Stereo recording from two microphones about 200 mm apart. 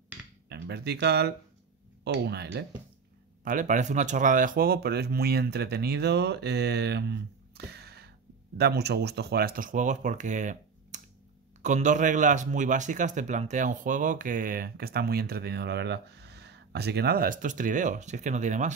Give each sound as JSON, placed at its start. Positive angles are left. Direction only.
{"t": 0.5, "sound": "speech", "side_deg": -55}
{"t": 3.4, "sound": "speech", "side_deg": -40}